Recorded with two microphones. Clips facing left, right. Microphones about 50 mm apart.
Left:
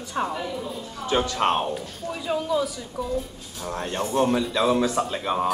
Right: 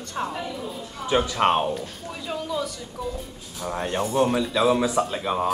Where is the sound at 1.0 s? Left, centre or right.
Centre.